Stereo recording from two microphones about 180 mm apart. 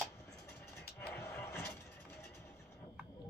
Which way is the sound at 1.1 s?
15° left (ahead or behind).